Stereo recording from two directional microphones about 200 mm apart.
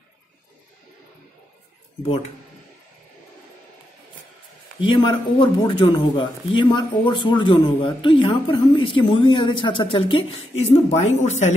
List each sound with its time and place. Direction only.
4.7 s speech: 25° left (ahead or behind)